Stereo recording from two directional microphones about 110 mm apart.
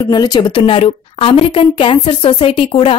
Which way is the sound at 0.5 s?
50° left (ahead or behind).